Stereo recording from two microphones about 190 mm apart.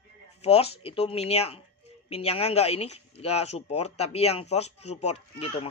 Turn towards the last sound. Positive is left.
turn(degrees=30)  # may be behind; listen again after turning